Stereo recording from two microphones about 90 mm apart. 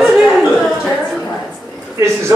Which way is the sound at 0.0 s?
5° right (ahead or behind).